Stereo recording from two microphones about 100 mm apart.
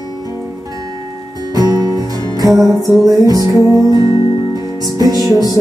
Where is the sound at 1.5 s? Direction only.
40° right (ahead or behind).